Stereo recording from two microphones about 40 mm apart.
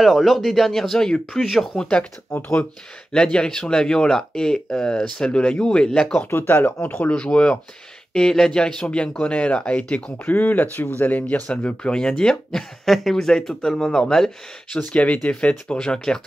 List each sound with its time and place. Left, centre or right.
0.0 s speech: centre
1.8 s speech: left
3.1 s speech: centre
6.4 s speech: left
7.1 s speech: left
8.1 s speech: centre; by 10.1 s left
10.1 s speech: left
11.9 s speech: left
12.4 s speech: centre
15.0 s speech: left
15.8 s speech: centre